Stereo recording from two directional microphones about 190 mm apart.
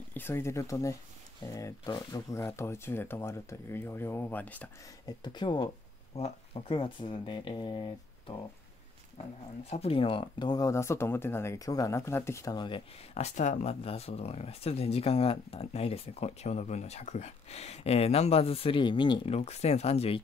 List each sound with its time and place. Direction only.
0.1 s speech: 10° left (ahead or behind)
5.0 s speech: 25° left (ahead or behind)
9.7 s speech: 30° left (ahead or behind)